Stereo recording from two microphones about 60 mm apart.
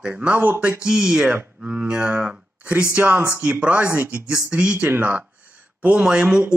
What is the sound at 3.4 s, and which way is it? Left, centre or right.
Speech, centre.